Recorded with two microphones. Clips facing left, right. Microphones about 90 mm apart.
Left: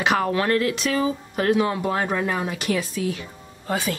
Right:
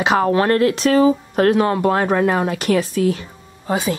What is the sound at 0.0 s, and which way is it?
Speech, 30° right (ahead or behind).